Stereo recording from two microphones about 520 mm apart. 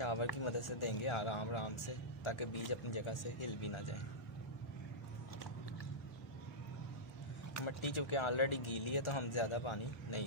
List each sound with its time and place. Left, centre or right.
0.0 s a sound: left
0.4 s speech: left
7.6 s speech: left